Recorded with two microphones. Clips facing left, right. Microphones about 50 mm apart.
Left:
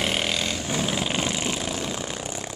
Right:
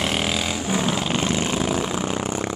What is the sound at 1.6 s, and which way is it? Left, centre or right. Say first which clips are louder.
Vehicle: right 6 dB; right.